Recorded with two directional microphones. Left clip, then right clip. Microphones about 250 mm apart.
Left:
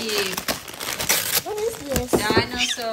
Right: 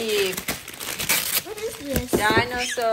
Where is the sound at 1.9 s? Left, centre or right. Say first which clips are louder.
Right 1 dB; centre.